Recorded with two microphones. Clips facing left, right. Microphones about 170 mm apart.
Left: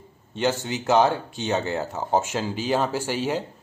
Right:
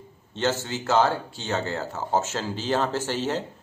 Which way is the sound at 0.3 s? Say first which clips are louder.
Left 2 dB; 15° left (ahead or behind).